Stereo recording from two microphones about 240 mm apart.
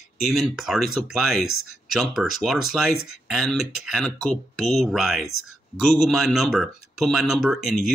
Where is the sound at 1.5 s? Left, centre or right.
Left.